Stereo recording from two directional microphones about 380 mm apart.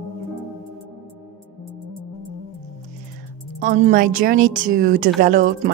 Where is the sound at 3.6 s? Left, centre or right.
Right.